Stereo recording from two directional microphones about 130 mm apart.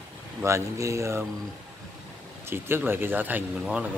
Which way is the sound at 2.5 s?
15° right (ahead or behind).